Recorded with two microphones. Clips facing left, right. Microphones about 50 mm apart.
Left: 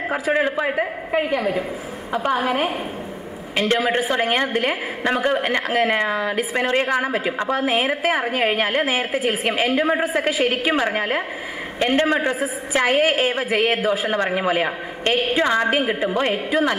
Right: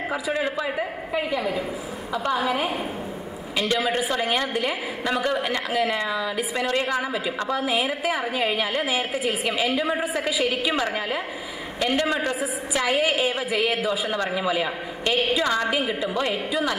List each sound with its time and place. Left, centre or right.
0.1 s a woman's voice: left